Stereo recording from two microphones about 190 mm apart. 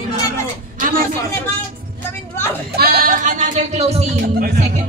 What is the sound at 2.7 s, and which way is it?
Speech, 50° right (ahead or behind).